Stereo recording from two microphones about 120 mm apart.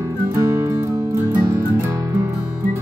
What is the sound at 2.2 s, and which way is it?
Music, 15° right (ahead or behind).